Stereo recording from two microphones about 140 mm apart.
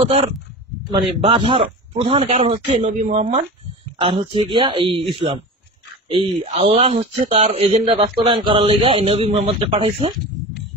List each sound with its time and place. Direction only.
1.2 s a man's voice: 40° right (ahead or behind)
4.0 s a man's voice: 40° right (ahead or behind)